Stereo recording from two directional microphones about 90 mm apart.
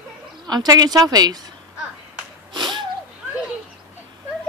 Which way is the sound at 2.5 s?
55° right (ahead or behind).